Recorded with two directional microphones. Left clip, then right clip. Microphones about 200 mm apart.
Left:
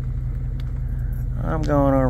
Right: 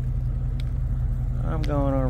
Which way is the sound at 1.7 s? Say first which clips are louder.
Left 8 dB; 30° left (ahead or behind).